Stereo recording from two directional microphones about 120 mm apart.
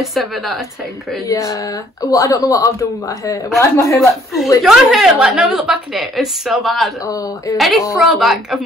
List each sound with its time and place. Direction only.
0.0 s a woman's voice: centre (ahead or behind)
1.3 s speech: 25° left (ahead or behind)
4.6 s a woman's voice: centre (ahead or behind)